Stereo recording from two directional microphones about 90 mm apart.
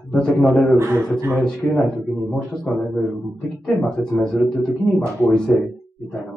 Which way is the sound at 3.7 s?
5° left (ahead or behind).